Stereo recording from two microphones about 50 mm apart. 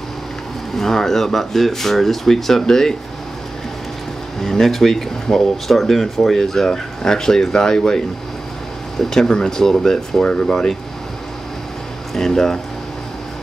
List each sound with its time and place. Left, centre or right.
0.7 s speech: centre
4.4 s speech: centre
12.1 s speech: centre